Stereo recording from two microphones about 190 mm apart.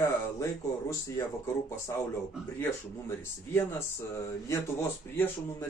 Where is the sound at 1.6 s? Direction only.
15° left (ahead or behind).